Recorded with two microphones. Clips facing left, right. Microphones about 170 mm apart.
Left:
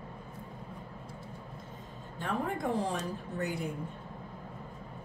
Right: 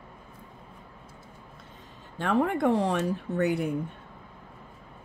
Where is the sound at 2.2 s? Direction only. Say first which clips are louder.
Right 9 dB; 75° right (ahead or behind).